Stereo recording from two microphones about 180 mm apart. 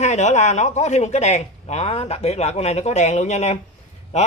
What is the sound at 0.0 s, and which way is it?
Speech, 40° left (ahead or behind).